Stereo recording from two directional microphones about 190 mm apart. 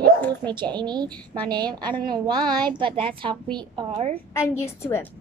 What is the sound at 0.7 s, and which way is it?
A woman's voice, 20° right (ahead or behind).